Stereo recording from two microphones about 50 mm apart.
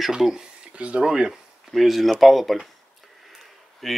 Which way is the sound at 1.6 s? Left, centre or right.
Centre.